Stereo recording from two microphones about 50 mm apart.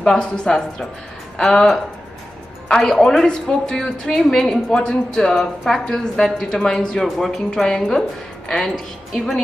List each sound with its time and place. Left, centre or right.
0.0 s a woman's voice: centre